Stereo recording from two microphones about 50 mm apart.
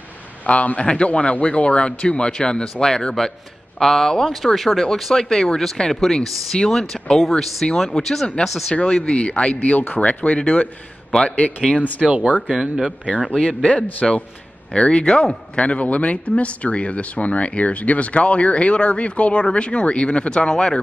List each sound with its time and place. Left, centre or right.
0.5 s speech: left; by 7.6 s centre
7.6 s speech: centre
8.8 s speech: centre
9.6 s speech: left
11.1 s a man's voice: centre
11.7 s speech: left
12.4 s speech: centre
13.3 s speech: centre
15.0 s speech: centre
15.5 s speech: left